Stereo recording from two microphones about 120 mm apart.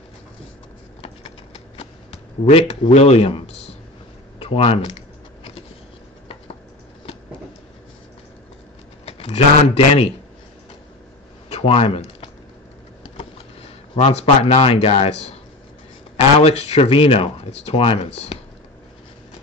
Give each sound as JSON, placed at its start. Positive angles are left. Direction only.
{"t": 1.0, "sound": "clip-clop", "side_deg": 55}
{"t": 2.4, "sound": "speech", "side_deg": 65}
{"t": 9.0, "sound": "speech", "side_deg": 55}
{"t": 11.4, "sound": "a sound", "side_deg": 55}
{"t": 13.2, "sound": "speech", "side_deg": 55}
{"t": 16.3, "sound": "speech", "side_deg": 60}